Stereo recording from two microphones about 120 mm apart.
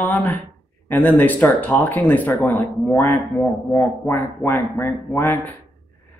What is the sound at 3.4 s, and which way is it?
Speech, centre (ahead or behind).